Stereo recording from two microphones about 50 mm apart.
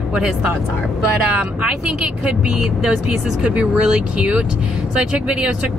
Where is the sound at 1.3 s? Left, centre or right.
Right.